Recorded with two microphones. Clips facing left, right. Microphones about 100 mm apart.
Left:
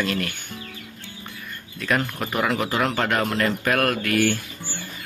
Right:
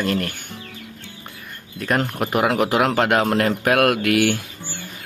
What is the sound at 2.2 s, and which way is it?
Speech, 65° right (ahead or behind).